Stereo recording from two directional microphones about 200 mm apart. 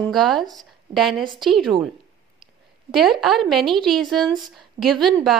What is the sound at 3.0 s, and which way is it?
A woman's voice, centre (ahead or behind).